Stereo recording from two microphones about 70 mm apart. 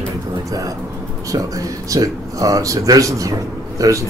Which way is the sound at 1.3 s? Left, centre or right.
Right.